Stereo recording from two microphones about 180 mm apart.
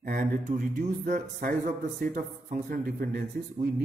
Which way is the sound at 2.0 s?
50° right (ahead or behind).